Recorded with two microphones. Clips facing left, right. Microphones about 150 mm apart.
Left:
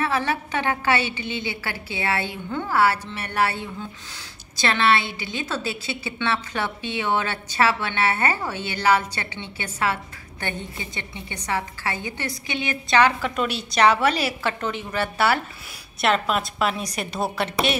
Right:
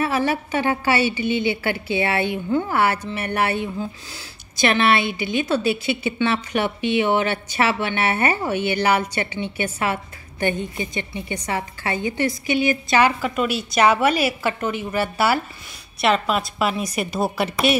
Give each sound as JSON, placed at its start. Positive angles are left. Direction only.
{"t": 0.0, "sound": "a woman's voice", "side_deg": -10}